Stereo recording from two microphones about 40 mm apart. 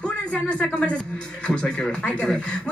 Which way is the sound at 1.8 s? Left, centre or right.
Centre.